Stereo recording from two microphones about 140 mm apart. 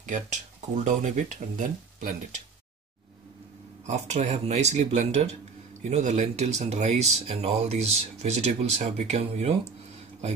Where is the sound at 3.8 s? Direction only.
55° right (ahead or behind).